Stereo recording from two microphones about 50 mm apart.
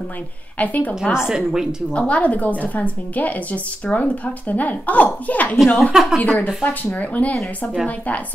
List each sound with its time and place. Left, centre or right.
0.6 s a woman's voice: left
1.1 s a woman's voice: centre
2.0 s a woman's voice: left
5.9 s a woman's voice: centre
6.6 s a woman's voice: left